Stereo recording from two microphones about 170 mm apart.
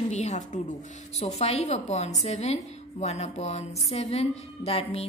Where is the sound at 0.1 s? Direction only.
45° left (ahead or behind).